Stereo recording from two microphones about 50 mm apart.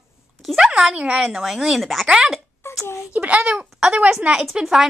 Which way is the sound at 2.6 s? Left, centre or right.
Left.